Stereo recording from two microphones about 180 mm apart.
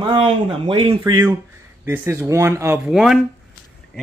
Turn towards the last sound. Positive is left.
turn(degrees=0)  # may be behind; listen again after turning